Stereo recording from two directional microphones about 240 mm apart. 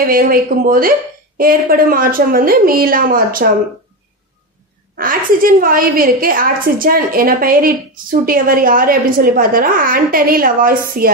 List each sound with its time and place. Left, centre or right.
0.0 s a woman's voice: right
4.9 s a woman's voice: right